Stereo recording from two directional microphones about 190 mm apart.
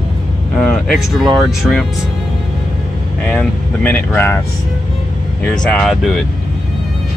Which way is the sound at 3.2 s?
10° left (ahead or behind).